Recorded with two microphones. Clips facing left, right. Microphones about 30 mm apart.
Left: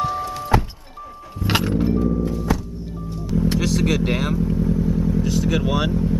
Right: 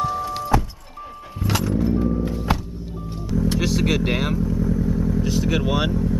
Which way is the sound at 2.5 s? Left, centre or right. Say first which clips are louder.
Right 1 dB; right.